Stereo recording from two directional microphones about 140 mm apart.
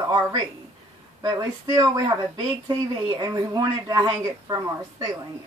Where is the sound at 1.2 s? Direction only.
25° right (ahead or behind).